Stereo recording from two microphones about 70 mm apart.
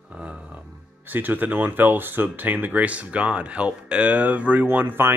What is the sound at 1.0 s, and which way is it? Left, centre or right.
Speech, right.